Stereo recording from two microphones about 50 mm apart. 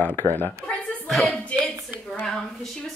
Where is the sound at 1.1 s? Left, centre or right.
Centre.